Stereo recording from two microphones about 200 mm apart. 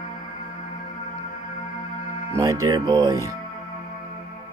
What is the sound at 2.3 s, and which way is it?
Speech, 15° right (ahead or behind).